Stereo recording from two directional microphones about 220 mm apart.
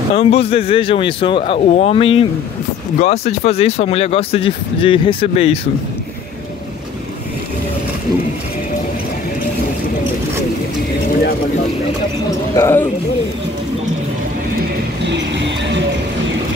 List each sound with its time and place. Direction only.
0.1 s speech: 25° left (ahead or behind)
12.5 s a man's voice: 10° left (ahead or behind)
15.0 s music: 55° right (ahead or behind)